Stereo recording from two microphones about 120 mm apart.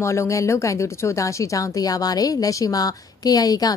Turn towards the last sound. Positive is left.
turn(degrees=30)  # may be behind; listen again after turning